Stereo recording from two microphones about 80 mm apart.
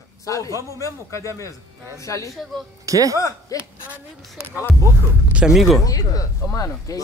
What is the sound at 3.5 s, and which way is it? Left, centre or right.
Speech, left.